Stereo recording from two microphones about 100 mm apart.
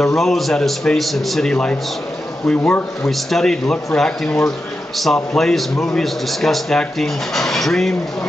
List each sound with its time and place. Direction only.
0.0 s a man's voice: 5° left (ahead or behind)
3.1 s speech: centre (ahead or behind)